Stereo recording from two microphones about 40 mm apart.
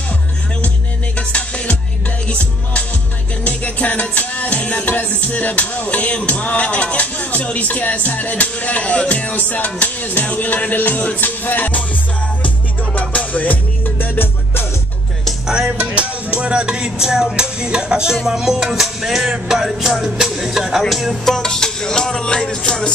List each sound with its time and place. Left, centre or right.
1.1 s music: left
4.8 s music: left
13.0 s music: left
13.8 s music: left
15.4 s music: centre
15.8 s music: right; by 21.2 s centre
21.3 s music: centre